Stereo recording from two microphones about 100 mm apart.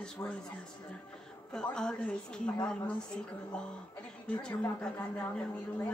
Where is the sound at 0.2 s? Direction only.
30° left (ahead or behind).